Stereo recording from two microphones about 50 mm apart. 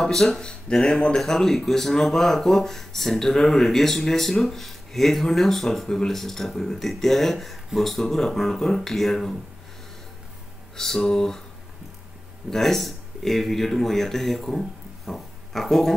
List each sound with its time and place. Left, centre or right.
0.0 s speech: centre
0.4 s speech: centre
10.8 s speech: centre
12.4 s speech: centre